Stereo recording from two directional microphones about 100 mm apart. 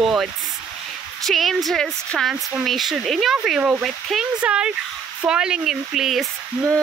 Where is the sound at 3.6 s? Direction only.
15° right (ahead or behind).